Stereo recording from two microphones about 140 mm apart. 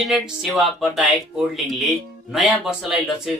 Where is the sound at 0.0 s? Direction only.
Centre (ahead or behind).